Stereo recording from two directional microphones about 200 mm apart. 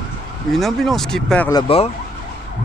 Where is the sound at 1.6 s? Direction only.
30° left (ahead or behind).